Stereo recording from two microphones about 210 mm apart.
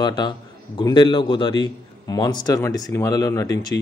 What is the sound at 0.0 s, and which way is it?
A man's voice, 20° left (ahead or behind).